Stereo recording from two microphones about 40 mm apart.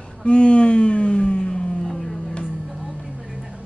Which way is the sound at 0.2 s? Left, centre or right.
Left.